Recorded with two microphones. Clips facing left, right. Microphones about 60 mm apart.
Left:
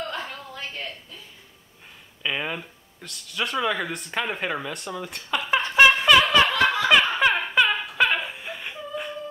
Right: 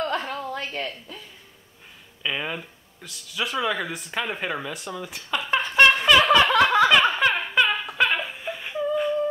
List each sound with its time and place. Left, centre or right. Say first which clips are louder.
0.1 s a sound: right 6 dB; right
2.2 s speech: even; centre
6.9 s laughter: even; centre